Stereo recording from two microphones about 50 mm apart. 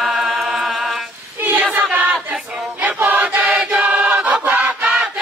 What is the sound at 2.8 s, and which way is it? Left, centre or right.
Choir, right.